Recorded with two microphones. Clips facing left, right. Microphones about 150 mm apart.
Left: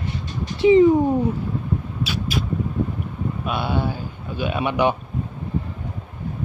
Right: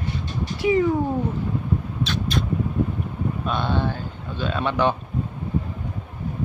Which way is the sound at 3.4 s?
10° left (ahead or behind).